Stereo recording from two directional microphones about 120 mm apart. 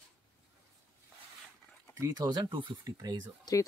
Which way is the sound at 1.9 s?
30° right (ahead or behind).